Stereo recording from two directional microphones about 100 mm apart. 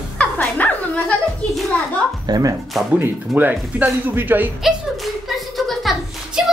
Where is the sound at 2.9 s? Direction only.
20° right (ahead or behind).